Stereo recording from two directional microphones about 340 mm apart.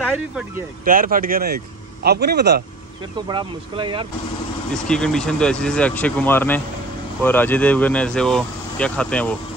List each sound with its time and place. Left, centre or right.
0.8 s speech: right
3.3 s speech: centre
4.8 s speech: centre